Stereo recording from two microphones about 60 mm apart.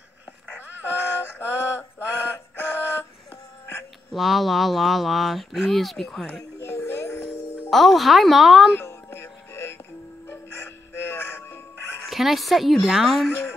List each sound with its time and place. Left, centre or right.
0.5 s synthetic singing: left
4.1 s speech: centre
6.6 s music: left
7.7 s speech: centre
8.7 s music: left
12.1 s speech: centre